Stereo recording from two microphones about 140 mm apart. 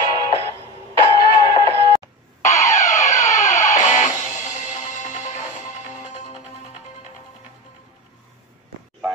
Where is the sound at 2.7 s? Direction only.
65° left (ahead or behind).